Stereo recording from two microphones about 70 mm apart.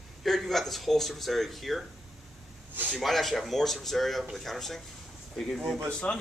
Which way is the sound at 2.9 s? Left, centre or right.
Centre.